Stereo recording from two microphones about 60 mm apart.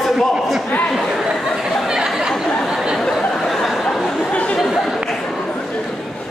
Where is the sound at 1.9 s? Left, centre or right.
Centre.